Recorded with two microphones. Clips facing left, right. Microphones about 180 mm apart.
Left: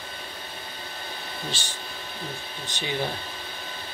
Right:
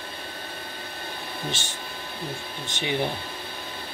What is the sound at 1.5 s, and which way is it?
Speech, 20° right (ahead or behind).